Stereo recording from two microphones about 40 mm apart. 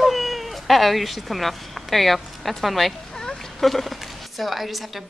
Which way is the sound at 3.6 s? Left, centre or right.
Centre.